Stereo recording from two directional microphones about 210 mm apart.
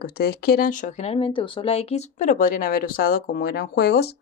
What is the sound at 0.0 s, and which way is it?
Speech, 50° left (ahead or behind).